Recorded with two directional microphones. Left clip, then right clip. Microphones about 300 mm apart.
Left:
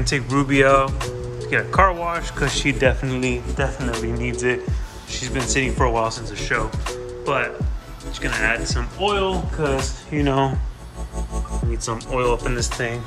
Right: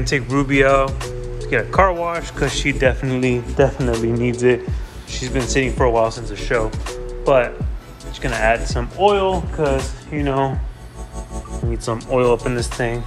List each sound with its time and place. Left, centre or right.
0.4 s speech: centre
0.8 s speech: centre
2.5 s speech: centre
3.5 s speech: centre
6.5 s speech: centre
10.1 s speech: centre
11.9 s speech: centre